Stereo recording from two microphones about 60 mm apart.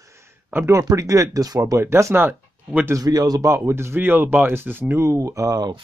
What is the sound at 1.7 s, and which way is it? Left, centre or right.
Speech, right.